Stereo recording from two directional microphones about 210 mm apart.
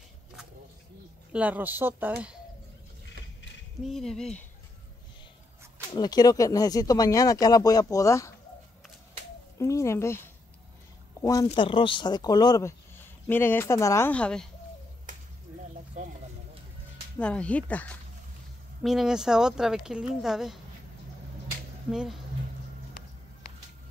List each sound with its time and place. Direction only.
1.3 s speech: 5° right (ahead or behind)
3.8 s speech: centre (ahead or behind)
5.9 s speech: 20° left (ahead or behind)
9.6 s speech: 15° left (ahead or behind)
15.1 s a sound: 40° right (ahead or behind)
17.2 s speech: 5° left (ahead or behind)
21.9 s speech: centre (ahead or behind)